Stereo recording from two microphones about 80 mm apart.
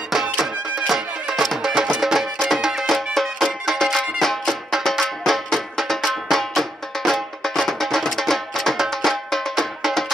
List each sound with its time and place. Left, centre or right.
0.1 s music: centre